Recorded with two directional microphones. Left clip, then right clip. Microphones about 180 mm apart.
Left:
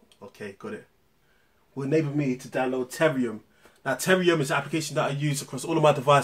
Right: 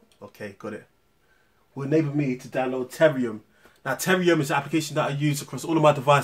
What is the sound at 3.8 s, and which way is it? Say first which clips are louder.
Speech: even; 20° right (ahead or behind).